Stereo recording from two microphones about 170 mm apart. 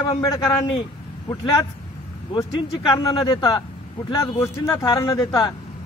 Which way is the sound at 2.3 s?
25° left (ahead or behind).